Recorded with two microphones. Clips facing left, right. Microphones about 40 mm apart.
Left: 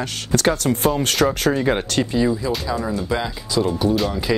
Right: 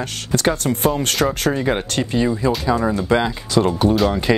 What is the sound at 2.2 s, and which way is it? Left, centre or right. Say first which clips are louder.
Speech: right 2 dB; right.